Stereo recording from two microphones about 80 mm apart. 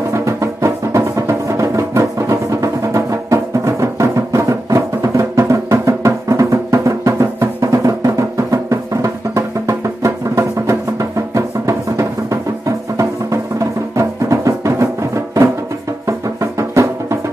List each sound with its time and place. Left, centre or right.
0.1 s music: right
16.1 s music: right